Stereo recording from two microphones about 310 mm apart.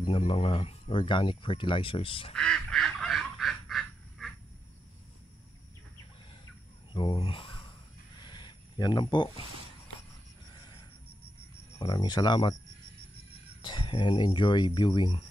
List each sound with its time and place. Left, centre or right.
0.0 s speech: centre
2.3 s duck: centre
6.9 s speech: centre
8.2 s a sound: centre
10.5 s a sound: centre
11.8 s speech: centre
13.6 s speech: centre